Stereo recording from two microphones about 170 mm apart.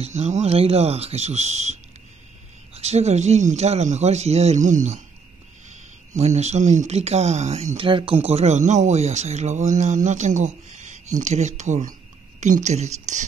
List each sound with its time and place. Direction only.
0.0 s speech: 40° right (ahead or behind)
6.1 s speech: 40° right (ahead or behind)